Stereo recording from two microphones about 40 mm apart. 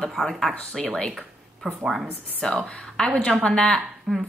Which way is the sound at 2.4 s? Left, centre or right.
Centre.